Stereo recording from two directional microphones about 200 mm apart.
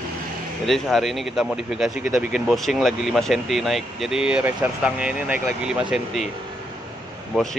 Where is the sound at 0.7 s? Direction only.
Centre (ahead or behind).